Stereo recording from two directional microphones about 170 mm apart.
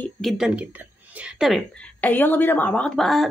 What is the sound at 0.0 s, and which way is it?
Speech, centre (ahead or behind).